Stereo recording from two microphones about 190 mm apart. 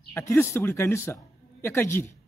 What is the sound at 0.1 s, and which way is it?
A man's voice, 15° left (ahead or behind).